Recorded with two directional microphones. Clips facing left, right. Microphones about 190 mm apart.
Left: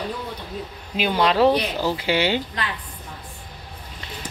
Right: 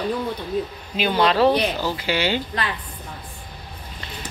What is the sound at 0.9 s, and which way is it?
A woman's voice, 10° left (ahead or behind).